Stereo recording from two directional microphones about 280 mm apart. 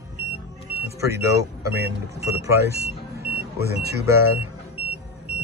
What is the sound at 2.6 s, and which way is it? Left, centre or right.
Vehicle, right.